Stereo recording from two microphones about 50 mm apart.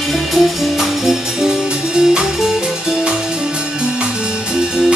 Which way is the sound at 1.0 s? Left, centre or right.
Centre.